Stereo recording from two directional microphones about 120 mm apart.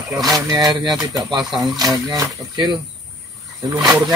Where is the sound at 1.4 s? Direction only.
Centre (ahead or behind).